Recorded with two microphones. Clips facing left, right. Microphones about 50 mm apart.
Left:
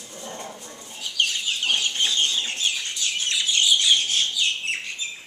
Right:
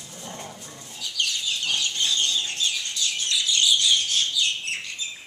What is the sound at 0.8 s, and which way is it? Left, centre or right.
Chicken, left.